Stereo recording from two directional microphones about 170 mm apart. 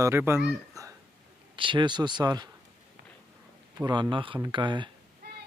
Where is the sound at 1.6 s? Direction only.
30° right (ahead or behind).